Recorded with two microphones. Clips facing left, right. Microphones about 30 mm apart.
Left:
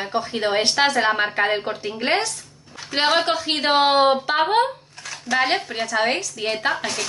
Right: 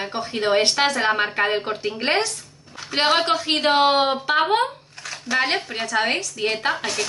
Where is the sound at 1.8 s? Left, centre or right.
Centre.